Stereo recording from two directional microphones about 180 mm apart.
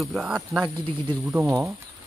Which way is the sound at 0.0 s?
Centre (ahead or behind).